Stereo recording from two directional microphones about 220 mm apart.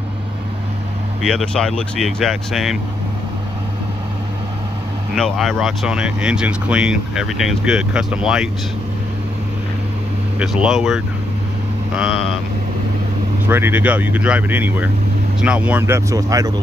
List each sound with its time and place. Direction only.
1.2 s speech: 5° left (ahead or behind)
5.1 s speech: centre (ahead or behind)
10.4 s speech: 5° right (ahead or behind)
11.9 s vehicle: 5° right (ahead or behind)
13.5 s speech: 10° right (ahead or behind)